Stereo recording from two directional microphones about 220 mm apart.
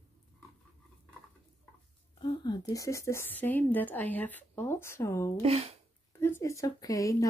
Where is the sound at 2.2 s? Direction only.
20° left (ahead or behind).